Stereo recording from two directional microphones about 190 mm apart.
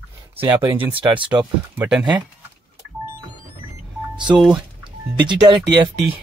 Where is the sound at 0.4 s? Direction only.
10° right (ahead or behind).